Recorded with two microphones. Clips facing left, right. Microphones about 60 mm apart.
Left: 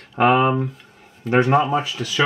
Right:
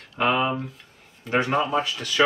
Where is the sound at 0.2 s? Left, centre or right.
Left.